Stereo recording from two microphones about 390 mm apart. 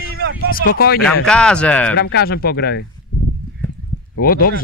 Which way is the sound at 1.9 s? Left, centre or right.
Left.